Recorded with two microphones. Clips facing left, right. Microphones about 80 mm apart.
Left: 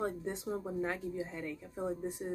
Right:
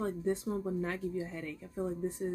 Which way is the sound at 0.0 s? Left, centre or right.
Centre.